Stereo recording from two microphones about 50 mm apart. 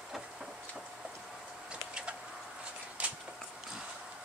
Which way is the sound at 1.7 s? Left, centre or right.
Right.